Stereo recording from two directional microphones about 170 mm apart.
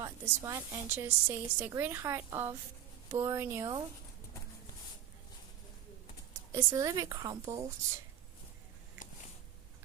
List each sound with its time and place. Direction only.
0.0 s a woman's voice: 20° right (ahead or behind)
6.5 s a woman's voice: 20° right (ahead or behind)